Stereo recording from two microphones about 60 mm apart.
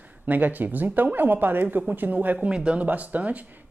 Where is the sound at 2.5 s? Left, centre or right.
Centre.